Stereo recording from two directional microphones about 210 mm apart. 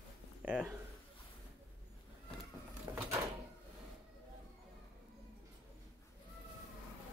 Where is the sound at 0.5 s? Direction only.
10° right (ahead or behind).